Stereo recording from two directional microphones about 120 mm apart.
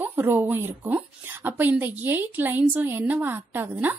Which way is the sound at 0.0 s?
15° right (ahead or behind).